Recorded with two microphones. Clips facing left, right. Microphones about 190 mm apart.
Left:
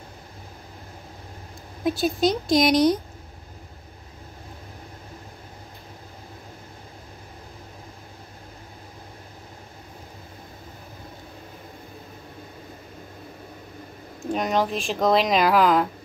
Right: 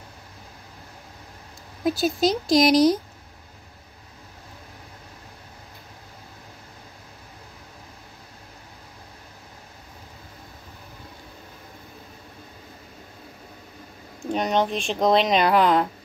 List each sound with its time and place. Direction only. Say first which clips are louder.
1.9 s speech: even; centre (ahead or behind)
14.2 s speech: right 1 dB; centre (ahead or behind)